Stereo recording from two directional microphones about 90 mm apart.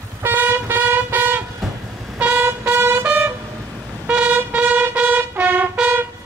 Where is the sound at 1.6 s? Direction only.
Centre (ahead or behind).